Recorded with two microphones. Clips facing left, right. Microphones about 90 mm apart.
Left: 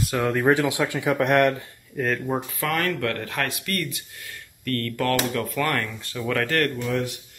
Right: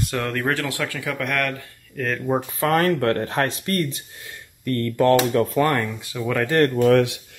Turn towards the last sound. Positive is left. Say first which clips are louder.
# right 10 dB
turn(degrees=-75)  # may be behind; listen again after turning